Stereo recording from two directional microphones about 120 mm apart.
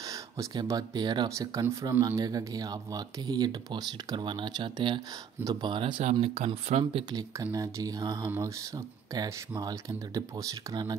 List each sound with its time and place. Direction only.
0.0 s a sound: 30° right (ahead or behind)
0.7 s speech: 35° right (ahead or behind)
1.3 s speech: 25° right (ahead or behind); by 6.0 s 45° right (ahead or behind)
6.2 s speech: 60° right (ahead or behind)
7.5 s speech: 30° right (ahead or behind)